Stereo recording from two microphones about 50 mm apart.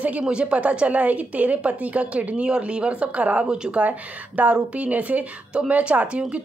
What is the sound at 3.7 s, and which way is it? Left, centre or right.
A woman's voice, right.